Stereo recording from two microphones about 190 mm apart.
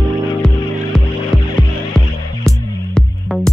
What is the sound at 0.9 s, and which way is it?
Hum, 5° left (ahead or behind).